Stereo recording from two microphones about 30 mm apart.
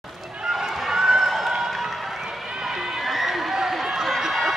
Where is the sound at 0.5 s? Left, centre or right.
Centre.